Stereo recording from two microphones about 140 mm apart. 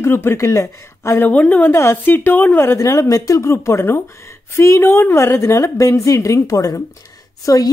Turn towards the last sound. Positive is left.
turn(degrees=25)  # may be behind; listen again after turning